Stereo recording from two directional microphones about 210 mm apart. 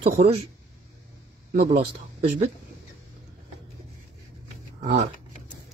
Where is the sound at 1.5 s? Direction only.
35° right (ahead or behind).